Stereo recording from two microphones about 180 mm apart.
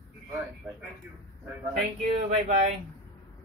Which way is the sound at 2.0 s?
35° right (ahead or behind).